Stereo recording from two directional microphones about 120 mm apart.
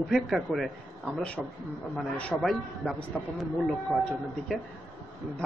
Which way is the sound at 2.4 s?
Centre (ahead or behind).